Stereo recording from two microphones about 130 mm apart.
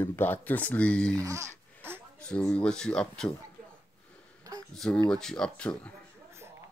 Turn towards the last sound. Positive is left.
turn(degrees=10)  # may be behind; listen again after turning